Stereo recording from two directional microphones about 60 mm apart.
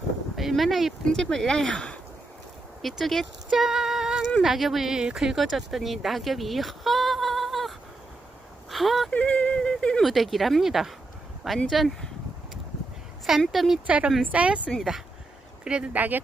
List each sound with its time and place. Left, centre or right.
0.4 s a woman's voice: centre
1.1 s speech: centre
2.8 s a woman's voice: centre
3.4 s female singing: centre
4.4 s speech: centre
9.1 s a sound: left
10.0 s a woman's voice: centre
13.5 s a woman's voice: centre
13.8 s speech: right
14.7 s a woman's voice: centre
15.6 s speech: centre